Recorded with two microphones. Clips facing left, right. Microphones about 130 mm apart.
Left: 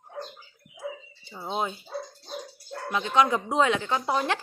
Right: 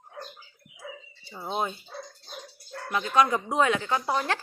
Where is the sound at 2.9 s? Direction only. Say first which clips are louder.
Even; 20° left (ahead or behind).